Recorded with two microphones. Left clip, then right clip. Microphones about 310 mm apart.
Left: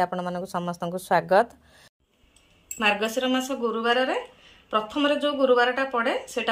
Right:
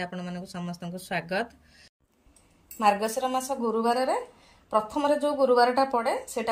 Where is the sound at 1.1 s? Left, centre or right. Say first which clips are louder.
Left 10 dB; left.